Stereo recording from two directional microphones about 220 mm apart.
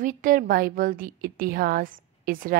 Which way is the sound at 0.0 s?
35° right (ahead or behind).